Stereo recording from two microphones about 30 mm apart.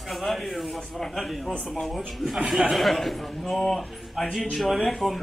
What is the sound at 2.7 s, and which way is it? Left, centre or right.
Speech, centre.